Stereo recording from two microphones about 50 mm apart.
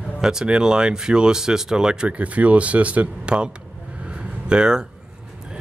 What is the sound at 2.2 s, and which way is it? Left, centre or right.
Speech, right.